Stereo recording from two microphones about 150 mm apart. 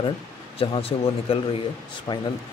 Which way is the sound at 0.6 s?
40° left (ahead or behind).